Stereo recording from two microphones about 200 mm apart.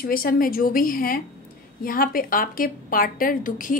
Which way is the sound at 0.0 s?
50° left (ahead or behind).